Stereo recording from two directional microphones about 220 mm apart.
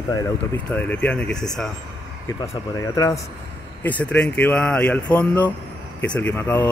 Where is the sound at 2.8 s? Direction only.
15° left (ahead or behind).